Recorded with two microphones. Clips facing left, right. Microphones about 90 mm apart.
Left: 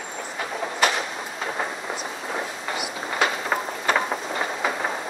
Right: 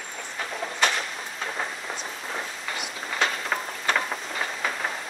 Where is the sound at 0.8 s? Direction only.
10° left (ahead or behind).